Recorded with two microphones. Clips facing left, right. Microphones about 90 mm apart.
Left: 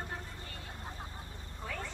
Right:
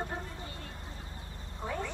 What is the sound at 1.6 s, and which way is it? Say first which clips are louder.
Frog: right 6 dB; 20° right (ahead or behind).